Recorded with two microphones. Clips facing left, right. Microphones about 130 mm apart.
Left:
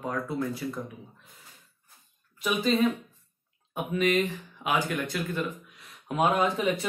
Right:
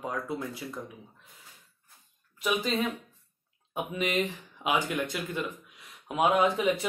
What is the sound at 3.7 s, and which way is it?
Speech, 20° right (ahead or behind).